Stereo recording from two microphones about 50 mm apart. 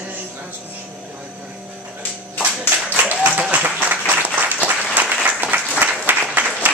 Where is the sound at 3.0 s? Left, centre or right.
Right.